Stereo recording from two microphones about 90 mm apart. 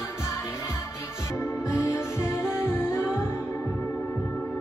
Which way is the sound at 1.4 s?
30° left (ahead or behind).